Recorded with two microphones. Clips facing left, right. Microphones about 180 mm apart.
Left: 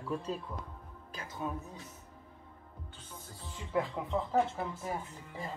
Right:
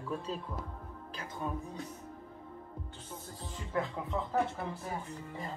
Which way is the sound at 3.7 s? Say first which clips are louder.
Left 2 dB; 10° left (ahead or behind).